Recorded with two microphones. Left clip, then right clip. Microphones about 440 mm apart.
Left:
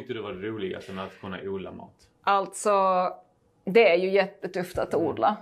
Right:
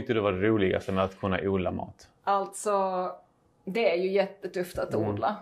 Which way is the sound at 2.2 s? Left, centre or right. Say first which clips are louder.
Left 4 dB; left.